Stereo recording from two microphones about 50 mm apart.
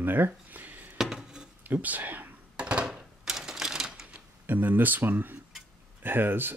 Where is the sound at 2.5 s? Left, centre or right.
Right.